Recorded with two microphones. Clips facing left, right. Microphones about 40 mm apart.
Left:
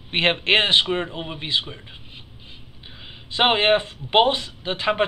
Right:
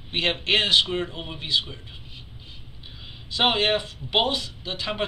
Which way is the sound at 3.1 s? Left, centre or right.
Left.